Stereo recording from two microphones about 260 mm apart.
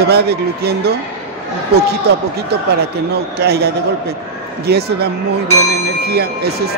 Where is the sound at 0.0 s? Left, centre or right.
Right.